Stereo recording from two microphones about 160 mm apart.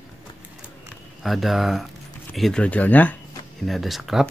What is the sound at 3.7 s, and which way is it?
Speech, centre (ahead or behind).